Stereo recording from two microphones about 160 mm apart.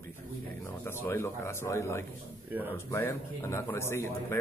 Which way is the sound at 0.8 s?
15° left (ahead or behind).